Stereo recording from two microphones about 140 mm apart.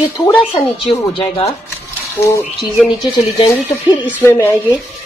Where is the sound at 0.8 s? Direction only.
45° left (ahead or behind).